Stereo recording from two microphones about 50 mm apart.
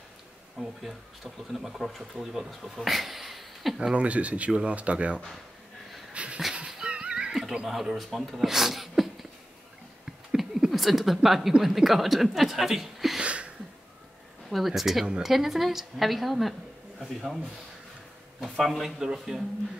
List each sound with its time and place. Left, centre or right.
0.6 s speech: centre
3.9 s speech: right
6.1 s dog: right
6.9 s music: right
7.7 s speech: centre
10.0 s a sound: centre
10.7 s speech: centre
13.2 s a sound: right
14.5 s speech: centre
17.0 s speech: centre
18.4 s speech: centre